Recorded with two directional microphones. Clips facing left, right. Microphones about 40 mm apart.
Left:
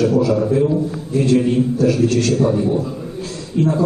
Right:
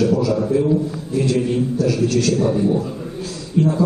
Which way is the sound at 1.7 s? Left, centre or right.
Left.